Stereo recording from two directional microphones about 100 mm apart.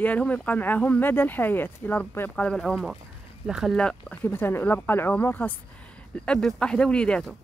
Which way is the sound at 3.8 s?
10° left (ahead or behind).